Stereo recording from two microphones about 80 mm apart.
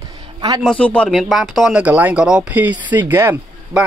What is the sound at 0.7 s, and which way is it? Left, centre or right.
Speech, centre.